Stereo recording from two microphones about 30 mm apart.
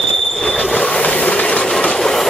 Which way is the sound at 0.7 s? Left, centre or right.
Left.